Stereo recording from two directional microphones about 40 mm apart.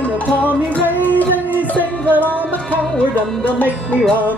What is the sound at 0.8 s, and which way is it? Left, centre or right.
Music, right.